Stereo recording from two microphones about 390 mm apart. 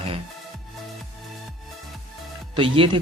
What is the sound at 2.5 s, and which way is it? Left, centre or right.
Speech, centre.